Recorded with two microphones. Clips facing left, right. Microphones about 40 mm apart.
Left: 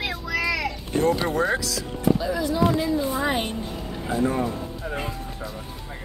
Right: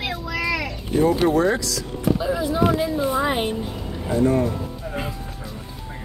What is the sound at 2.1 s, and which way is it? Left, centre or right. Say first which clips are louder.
Speech: right 2 dB; right.